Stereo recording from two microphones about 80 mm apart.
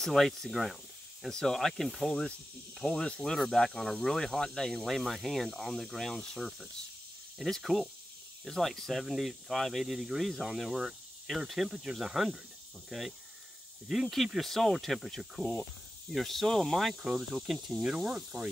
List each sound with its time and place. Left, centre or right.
0.0 s speech: centre
14.1 s speech: centre